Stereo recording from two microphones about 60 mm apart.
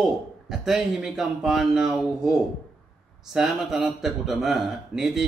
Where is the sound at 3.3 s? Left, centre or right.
Centre.